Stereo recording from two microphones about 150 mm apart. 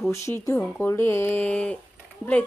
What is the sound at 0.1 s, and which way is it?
Speech, 20° left (ahead or behind).